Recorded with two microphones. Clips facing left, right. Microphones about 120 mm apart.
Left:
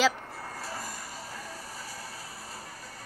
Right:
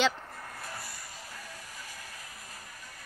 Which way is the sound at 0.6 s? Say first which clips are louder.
Left 5 dB; 35° left (ahead or behind).